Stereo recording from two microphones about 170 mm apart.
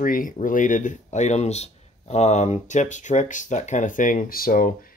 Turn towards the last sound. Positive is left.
turn(degrees=55)  # may be behind; listen again after turning